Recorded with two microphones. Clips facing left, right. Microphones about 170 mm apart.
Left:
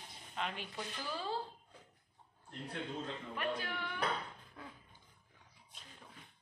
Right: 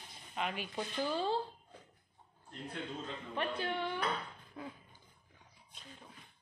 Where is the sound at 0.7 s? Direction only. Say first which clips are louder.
Right 7 dB; 25° right (ahead or behind).